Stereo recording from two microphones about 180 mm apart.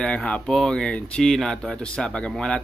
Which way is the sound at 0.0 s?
5° left (ahead or behind).